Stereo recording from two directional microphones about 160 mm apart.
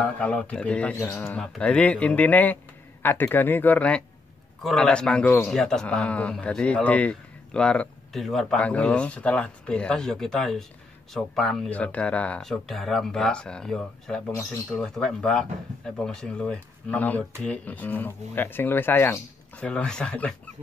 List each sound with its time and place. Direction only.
0.0 s speech: 5° left (ahead or behind)